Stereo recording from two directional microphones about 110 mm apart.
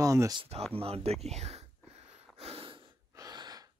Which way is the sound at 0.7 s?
65° right (ahead or behind).